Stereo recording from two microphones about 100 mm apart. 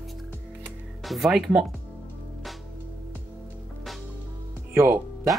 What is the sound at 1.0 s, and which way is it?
Speech, centre (ahead or behind).